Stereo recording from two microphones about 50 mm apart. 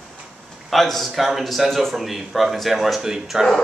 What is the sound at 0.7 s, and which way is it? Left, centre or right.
A man's voice, centre.